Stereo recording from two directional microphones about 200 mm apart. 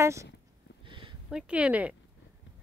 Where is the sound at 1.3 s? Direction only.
5° right (ahead or behind).